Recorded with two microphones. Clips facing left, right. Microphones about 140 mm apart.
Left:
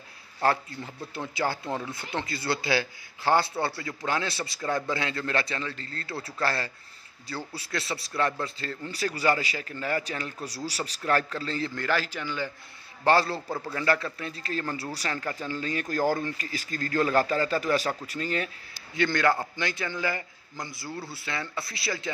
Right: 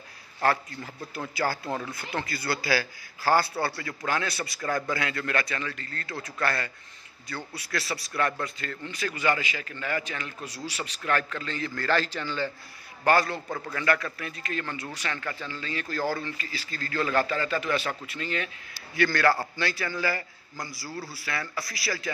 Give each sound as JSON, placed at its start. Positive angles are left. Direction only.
{"t": 0.4, "sound": "a man's voice", "side_deg": 25}
{"t": 11.7, "sound": "a man's voice", "side_deg": 15}
{"t": 13.0, "sound": "a man's voice", "side_deg": 30}
{"t": 18.9, "sound": "a man's voice", "side_deg": 20}